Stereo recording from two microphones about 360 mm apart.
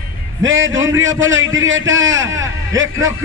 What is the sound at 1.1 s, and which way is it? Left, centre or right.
A man's voice, right.